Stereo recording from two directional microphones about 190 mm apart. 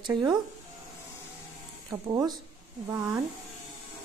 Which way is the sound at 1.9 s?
20° right (ahead or behind).